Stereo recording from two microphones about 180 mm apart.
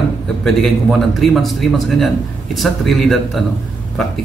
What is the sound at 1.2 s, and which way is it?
Speech, centre (ahead or behind).